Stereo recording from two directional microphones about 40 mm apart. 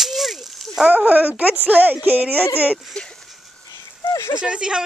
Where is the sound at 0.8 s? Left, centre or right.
Right.